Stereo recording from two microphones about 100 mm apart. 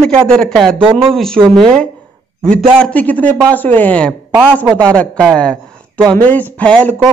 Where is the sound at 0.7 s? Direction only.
60° right (ahead or behind).